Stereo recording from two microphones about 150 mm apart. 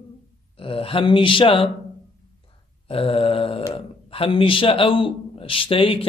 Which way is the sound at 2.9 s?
40° left (ahead or behind).